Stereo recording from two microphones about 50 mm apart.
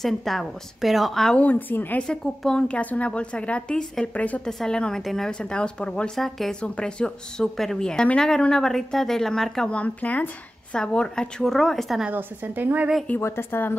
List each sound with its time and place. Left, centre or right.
0.0 s a woman's voice: centre
1.3 s speech: left
2.0 s speech: centre
2.7 s a woman's voice: left
4.5 s speech: centre
5.4 s a woman's voice: centre
6.1 s a woman's voice: centre
6.6 s a woman's voice: centre
7.5 s speech: centre
9.7 s a woman's voice: left
10.8 s speech: centre
11.4 s a woman's voice: centre
12.1 s a woman's voice: right
13.2 s a woman's voice: left